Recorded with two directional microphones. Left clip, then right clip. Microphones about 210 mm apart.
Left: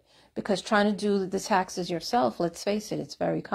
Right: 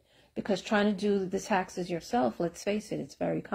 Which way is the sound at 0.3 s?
15° left (ahead or behind).